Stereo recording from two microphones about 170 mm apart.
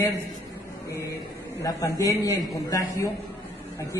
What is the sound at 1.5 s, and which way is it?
A man's voice, 20° left (ahead or behind).